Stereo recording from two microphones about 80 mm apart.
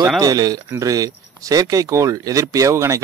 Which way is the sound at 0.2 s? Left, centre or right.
Right.